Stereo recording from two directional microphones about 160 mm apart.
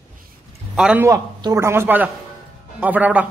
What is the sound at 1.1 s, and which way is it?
A man's voice, 20° right (ahead or behind).